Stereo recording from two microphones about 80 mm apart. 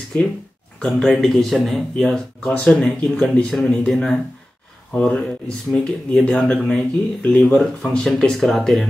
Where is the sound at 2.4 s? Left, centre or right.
Centre.